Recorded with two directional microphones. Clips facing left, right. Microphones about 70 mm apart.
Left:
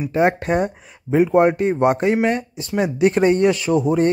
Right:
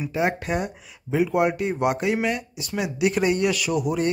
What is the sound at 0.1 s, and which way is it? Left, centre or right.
Speech, left.